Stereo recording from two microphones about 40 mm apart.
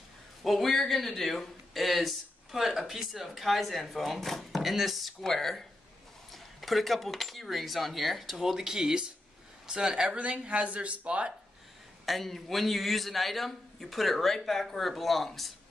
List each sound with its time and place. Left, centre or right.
0.4 s a man's voice: centre
10.1 s speech: right
12.1 s speech: centre